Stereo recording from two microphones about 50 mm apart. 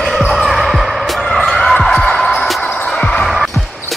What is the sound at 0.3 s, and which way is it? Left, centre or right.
Basketball bounce, centre.